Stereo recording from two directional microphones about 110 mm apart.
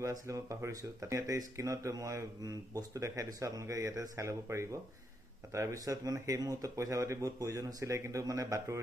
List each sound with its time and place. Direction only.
0.0 s speech: 30° right (ahead or behind)